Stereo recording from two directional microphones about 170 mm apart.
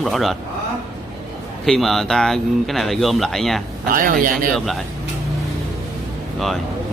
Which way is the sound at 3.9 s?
55° right (ahead or behind).